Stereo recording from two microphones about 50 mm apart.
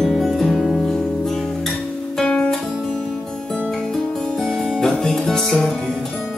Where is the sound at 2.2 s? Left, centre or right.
Left.